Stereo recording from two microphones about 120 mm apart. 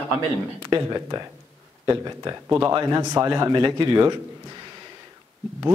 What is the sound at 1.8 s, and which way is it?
Speech, 25° right (ahead or behind).